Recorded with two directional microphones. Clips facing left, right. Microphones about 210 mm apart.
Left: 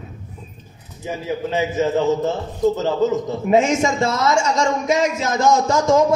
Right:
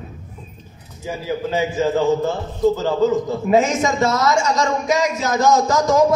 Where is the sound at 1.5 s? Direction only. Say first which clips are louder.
Even; 30° right (ahead or behind).